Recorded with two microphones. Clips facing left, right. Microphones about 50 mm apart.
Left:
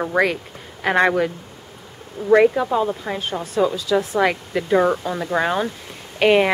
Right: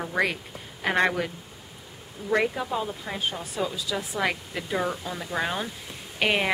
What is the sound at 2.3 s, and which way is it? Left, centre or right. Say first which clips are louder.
Speech: left 10 dB; left.